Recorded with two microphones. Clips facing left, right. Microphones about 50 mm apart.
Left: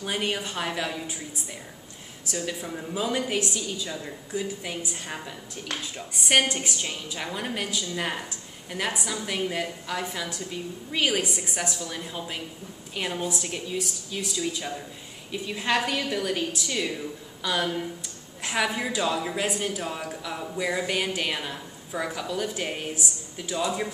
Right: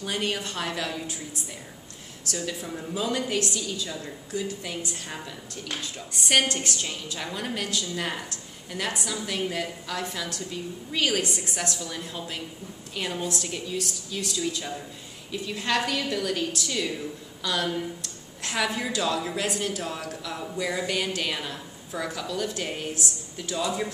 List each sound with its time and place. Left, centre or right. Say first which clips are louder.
0.0 s a woman's voice: even; centre
2.3 s a woman's voice: left 1 dB; centre